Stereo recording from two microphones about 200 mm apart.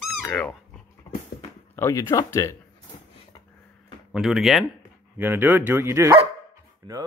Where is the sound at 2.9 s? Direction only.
30° left (ahead or behind).